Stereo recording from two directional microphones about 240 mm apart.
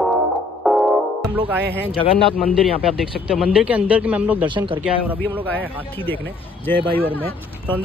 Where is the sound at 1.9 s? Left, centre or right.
Left.